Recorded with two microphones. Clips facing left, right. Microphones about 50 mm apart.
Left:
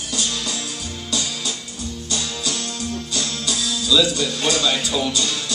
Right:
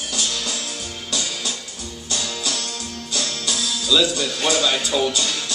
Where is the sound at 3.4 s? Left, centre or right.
Right.